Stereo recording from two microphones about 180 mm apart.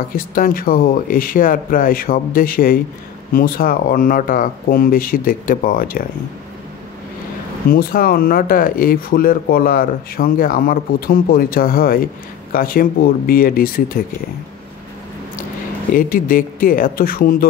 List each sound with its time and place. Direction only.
0.1 s speech: 50° left (ahead or behind)
7.7 s speech: 55° left (ahead or behind)
15.9 s speech: 50° left (ahead or behind)